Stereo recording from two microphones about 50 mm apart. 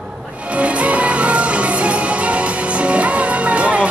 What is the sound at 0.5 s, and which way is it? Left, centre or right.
Music, right.